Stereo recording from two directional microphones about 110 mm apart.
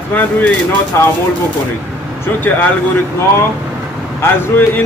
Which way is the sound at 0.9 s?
25° left (ahead or behind).